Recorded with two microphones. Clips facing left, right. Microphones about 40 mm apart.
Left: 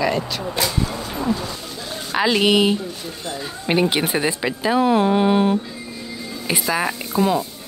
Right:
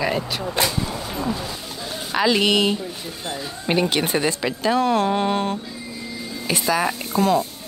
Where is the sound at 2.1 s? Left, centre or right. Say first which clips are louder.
Left 2 dB; centre.